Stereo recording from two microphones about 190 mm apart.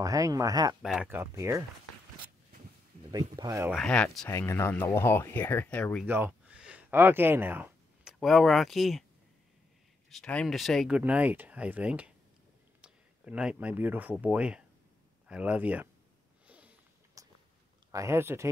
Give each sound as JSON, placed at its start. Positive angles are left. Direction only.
{"t": 0.0, "sound": "speech", "side_deg": -20}
{"t": 0.8, "sound": "speech", "side_deg": -5}
{"t": 3.1, "sound": "speech", "side_deg": -20}
{"t": 3.7, "sound": "speech", "side_deg": 5}
{"t": 6.0, "sound": "speech", "side_deg": -10}
{"t": 10.0, "sound": "speech", "side_deg": 5}
{"t": 16.4, "sound": "a sound", "side_deg": -5}
{"t": 17.9, "sound": "speech", "side_deg": -15}